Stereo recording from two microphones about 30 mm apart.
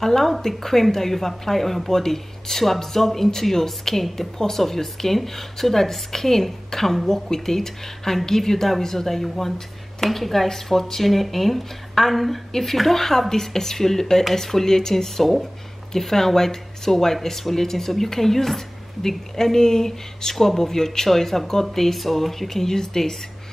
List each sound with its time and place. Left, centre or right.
0.0 s speech: centre